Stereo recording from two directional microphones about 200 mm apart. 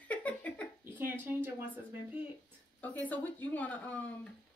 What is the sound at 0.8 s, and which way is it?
Speech, 10° right (ahead or behind).